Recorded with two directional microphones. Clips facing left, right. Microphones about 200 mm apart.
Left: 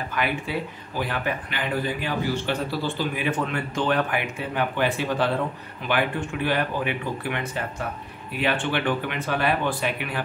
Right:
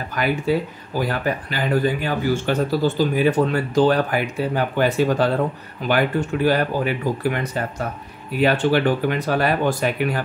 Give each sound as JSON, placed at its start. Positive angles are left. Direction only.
{"t": 0.1, "sound": "speech", "side_deg": -40}